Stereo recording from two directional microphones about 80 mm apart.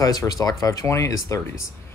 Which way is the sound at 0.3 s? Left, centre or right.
Left.